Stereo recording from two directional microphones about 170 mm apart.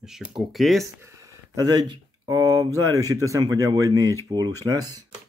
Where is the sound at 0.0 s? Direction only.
5° right (ahead or behind).